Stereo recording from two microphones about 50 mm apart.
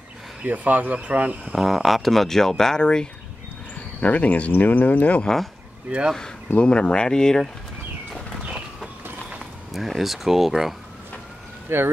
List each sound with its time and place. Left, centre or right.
0.4 s speech: right
1.5 s speech: centre
4.0 s speech: left
5.2 s speech: centre
5.9 s speech: right
6.5 s speech: centre
9.7 s speech: centre
11.7 s speech: right